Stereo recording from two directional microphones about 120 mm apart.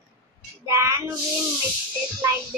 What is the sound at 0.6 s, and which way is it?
Speech, 25° right (ahead or behind).